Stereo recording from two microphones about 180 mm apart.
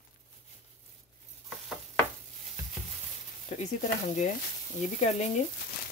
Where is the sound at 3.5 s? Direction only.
40° left (ahead or behind).